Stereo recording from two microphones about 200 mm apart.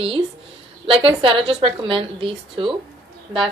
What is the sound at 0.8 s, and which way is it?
A woman's voice, 25° right (ahead or behind).